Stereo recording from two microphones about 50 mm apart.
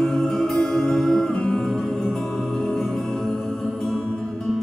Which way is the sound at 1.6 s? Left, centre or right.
Centre.